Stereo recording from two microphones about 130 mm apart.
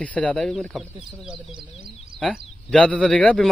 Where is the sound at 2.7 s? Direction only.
10° left (ahead or behind).